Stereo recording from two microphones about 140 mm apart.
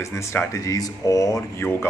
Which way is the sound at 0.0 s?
20° left (ahead or behind).